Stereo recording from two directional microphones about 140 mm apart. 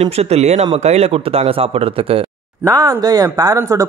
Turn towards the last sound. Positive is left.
turn(degrees=-25)  # may be behind; listen again after turning